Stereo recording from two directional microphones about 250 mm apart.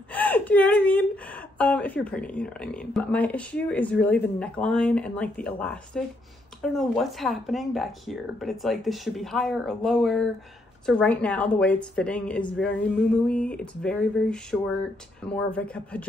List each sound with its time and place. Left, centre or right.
0.1 s a woman's voice: centre